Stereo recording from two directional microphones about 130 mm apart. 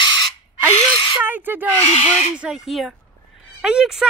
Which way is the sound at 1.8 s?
55° left (ahead or behind).